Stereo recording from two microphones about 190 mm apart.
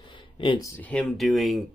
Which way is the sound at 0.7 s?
10° left (ahead or behind).